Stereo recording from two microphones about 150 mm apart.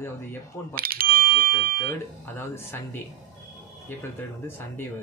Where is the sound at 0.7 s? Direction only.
80° right.